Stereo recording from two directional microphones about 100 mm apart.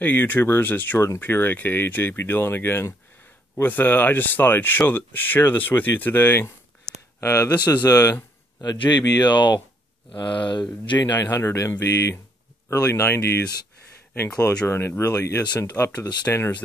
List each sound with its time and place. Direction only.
0.0 s speech: 20° left (ahead or behind)